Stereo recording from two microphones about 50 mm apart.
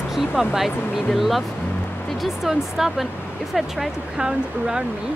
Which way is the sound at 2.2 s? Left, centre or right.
Centre.